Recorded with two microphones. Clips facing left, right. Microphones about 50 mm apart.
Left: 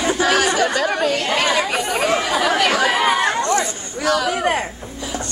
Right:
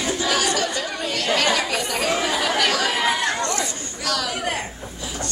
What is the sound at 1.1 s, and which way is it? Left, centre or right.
A woman's voice, left.